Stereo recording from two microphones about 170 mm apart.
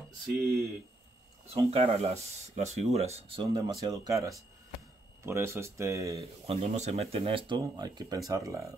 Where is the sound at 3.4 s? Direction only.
25° right (ahead or behind).